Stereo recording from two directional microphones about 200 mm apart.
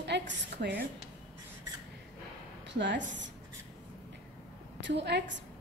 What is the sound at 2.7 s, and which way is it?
Speech, 60° right (ahead or behind).